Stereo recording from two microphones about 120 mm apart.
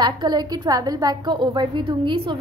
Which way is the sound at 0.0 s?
35° right (ahead or behind).